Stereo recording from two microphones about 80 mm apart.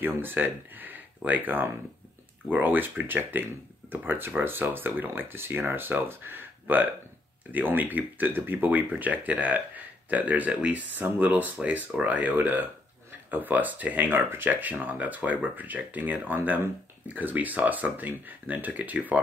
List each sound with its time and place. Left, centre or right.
0.0 s speech: right